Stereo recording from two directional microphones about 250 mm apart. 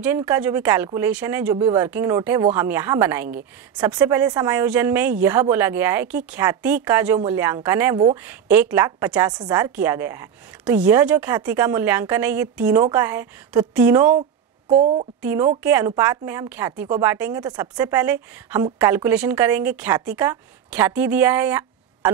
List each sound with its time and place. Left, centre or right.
0.0 s a woman's voice: centre
14.7 s a woman's voice: right
15.2 s a woman's voice: centre